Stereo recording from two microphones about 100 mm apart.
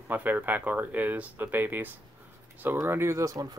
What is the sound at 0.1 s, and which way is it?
Speech, 20° right (ahead or behind).